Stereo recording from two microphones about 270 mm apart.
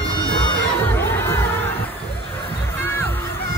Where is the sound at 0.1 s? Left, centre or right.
Centre.